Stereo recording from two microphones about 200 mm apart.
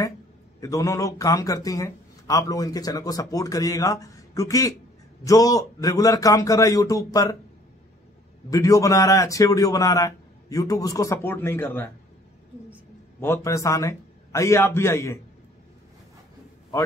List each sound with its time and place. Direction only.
0.6 s speech: 15° left (ahead or behind)
8.5 s speech: 15° left (ahead or behind)
13.2 s speech: 15° left (ahead or behind)